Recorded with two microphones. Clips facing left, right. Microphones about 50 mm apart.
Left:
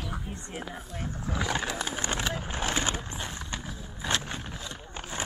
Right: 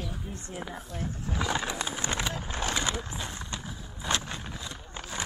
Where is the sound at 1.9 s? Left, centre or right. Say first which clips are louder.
Left 1 dB; left.